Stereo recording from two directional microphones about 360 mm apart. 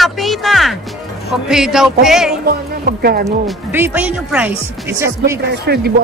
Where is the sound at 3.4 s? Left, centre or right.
Centre.